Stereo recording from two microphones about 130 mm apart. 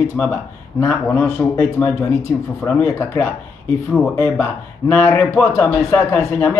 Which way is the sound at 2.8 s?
15° left (ahead or behind).